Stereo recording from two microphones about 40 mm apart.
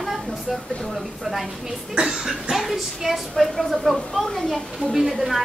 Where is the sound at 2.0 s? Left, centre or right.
Centre.